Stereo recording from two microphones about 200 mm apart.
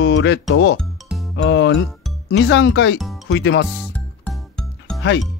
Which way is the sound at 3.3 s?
60° left (ahead or behind).